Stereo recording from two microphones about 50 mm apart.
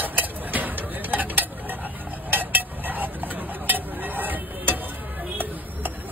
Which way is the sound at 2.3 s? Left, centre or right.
Right.